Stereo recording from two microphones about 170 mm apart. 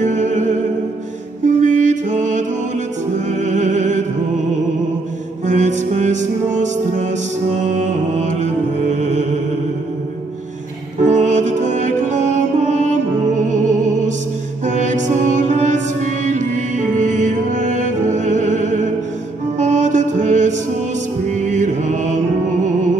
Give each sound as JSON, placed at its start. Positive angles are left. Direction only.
{"t": 0.0, "sound": "music", "side_deg": -45}
{"t": 1.4, "sound": "music", "side_deg": -45}
{"t": 5.5, "sound": "music", "side_deg": -45}
{"t": 7.6, "sound": "mantra", "side_deg": -50}
{"t": 11.1, "sound": "music", "side_deg": -45}